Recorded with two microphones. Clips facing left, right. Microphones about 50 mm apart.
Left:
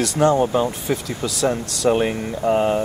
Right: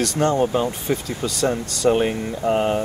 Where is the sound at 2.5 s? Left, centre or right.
Centre.